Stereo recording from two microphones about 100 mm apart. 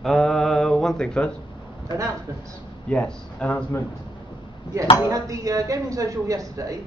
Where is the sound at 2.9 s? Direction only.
10° left (ahead or behind).